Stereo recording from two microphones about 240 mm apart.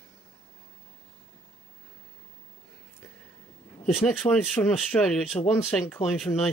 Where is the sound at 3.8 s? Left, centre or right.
Centre.